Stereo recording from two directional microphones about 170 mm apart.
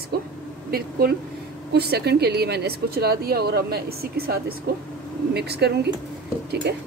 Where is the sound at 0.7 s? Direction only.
65° right (ahead or behind).